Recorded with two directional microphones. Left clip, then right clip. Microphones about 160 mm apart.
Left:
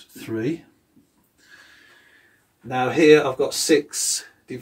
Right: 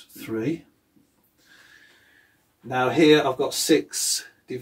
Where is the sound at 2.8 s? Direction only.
35° right (ahead or behind).